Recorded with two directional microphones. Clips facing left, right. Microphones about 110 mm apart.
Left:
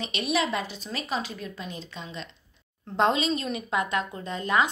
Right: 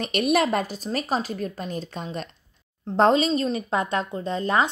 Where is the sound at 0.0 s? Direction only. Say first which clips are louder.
Right 6 dB; 50° right (ahead or behind).